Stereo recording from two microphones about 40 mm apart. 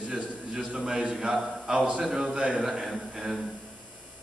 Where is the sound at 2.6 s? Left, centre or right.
Centre.